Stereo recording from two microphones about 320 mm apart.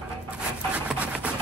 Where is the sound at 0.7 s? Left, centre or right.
Centre.